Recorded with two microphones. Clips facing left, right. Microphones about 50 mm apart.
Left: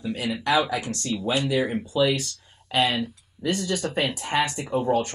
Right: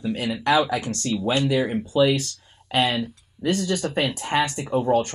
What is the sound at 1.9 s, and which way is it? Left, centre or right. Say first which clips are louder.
Speech: right 3 dB; right.